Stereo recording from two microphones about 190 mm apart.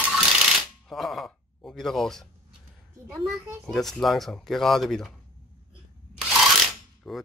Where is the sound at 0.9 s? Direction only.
Centre (ahead or behind).